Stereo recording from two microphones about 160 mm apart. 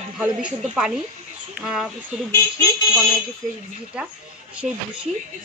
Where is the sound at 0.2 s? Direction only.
5° right (ahead or behind).